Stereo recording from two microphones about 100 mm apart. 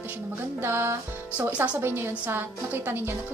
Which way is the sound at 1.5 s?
15° right (ahead or behind).